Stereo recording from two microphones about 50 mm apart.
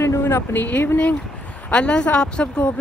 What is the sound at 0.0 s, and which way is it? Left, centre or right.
Speech, left.